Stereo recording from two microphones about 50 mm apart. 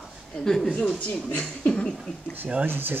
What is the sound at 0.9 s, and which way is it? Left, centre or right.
Speech, left.